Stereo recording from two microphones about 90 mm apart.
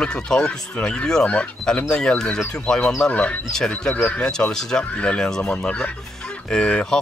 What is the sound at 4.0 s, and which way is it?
Speech, 20° left (ahead or behind).